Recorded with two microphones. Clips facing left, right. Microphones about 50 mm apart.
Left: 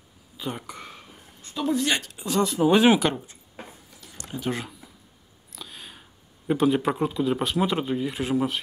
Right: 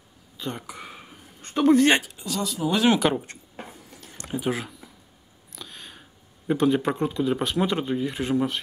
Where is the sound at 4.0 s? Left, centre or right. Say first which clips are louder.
Even; right.